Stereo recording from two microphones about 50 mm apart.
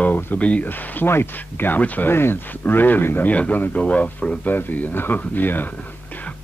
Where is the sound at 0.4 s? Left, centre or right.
Left.